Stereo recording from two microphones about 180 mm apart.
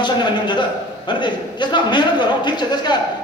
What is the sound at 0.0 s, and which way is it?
A man's voice, 25° left (ahead or behind).